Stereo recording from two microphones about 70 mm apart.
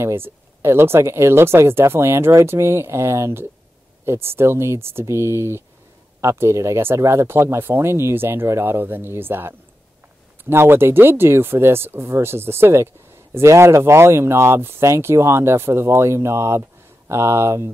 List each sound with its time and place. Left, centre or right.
0.0 s speech: right